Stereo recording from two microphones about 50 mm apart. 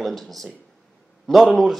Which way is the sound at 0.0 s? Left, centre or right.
Centre.